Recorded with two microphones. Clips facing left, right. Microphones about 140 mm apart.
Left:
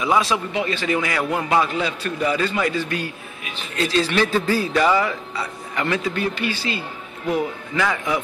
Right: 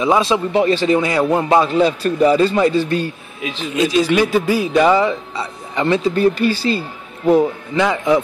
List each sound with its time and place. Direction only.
0.0 s a man's voice: 25° right (ahead or behind)
0.5 s a man's voice: 35° right (ahead or behind)
3.7 s a man's voice: 15° right (ahead or behind)